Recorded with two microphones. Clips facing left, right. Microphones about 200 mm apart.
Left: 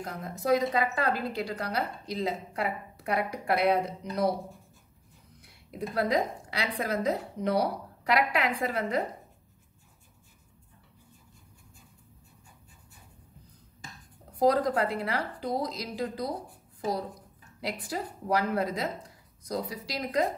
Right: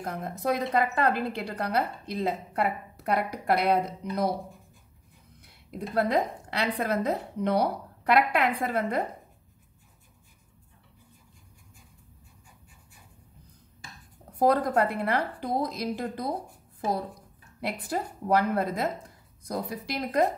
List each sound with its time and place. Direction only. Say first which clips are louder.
0.0 s a woman's voice: right 2 dB; 55° right (ahead or behind)
3.8 s a woman's voice: even; 55° right (ahead or behind)
5.8 s a woman's voice: right 2 dB; 55° right (ahead or behind)
14.3 s a woman's voice: right 1 dB; 55° right (ahead or behind)